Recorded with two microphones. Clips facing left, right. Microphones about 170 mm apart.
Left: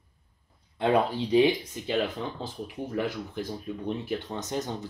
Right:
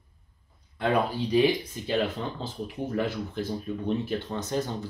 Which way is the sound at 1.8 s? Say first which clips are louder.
Right 1 dB; 15° left (ahead or behind).